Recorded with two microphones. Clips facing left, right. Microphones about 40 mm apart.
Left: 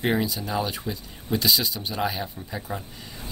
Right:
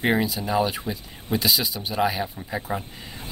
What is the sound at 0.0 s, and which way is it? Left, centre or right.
Speech, centre.